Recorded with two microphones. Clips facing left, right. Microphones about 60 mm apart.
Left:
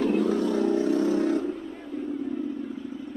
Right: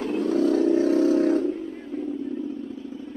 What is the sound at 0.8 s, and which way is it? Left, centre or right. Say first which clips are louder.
Vehicle: right 4 dB; right.